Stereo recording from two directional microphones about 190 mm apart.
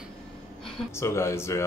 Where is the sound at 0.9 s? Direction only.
15° left (ahead or behind).